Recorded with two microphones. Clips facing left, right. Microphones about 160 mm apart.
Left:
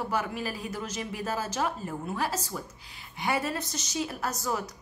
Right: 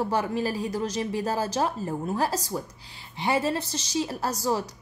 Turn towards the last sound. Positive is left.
turn(degrees=-35)  # may be behind; listen again after turning